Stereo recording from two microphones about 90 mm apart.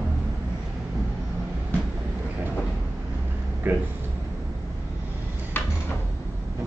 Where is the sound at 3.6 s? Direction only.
20° right (ahead or behind).